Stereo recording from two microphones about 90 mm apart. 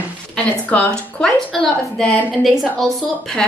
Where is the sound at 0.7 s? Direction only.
15° left (ahead or behind).